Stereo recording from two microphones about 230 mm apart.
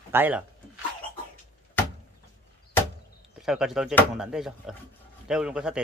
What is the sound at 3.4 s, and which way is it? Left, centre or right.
Speech, centre.